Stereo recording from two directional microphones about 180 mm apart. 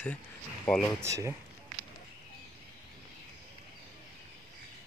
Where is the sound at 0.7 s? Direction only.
5° left (ahead or behind).